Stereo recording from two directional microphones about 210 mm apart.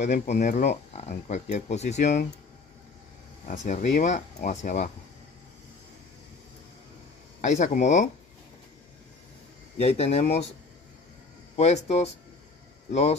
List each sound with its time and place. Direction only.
0.0 s speech: 35° left (ahead or behind)
3.4 s speech: 35° left (ahead or behind)
7.4 s speech: 35° left (ahead or behind)
9.8 s speech: 30° left (ahead or behind)
11.5 s speech: 30° left (ahead or behind)